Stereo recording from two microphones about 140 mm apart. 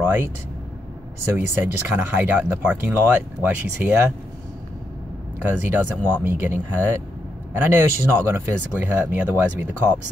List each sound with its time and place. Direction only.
1.3 s speech: 15° right (ahead or behind)
5.4 s speech: 10° right (ahead or behind)